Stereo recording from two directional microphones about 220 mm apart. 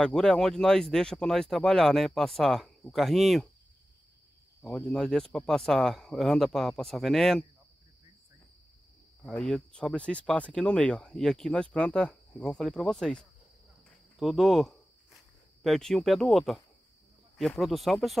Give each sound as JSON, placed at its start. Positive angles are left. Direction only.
{"t": 0.0, "sound": "speech", "side_deg": 5}
{"t": 4.6, "sound": "speech", "side_deg": 5}
{"t": 9.2, "sound": "speech", "side_deg": 5}
{"t": 13.8, "sound": "cricket", "side_deg": 0}
{"t": 15.6, "sound": "speech", "side_deg": 0}